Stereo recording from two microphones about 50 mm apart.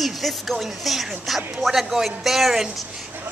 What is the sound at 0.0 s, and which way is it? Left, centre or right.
Speech, centre.